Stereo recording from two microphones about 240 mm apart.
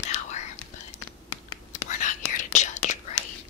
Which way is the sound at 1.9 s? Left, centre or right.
Left.